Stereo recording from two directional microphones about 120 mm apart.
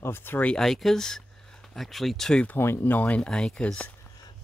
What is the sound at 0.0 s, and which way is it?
Speech, 20° left (ahead or behind).